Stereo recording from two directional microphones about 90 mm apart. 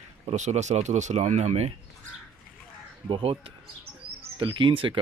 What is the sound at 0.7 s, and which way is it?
Speech, 90° right.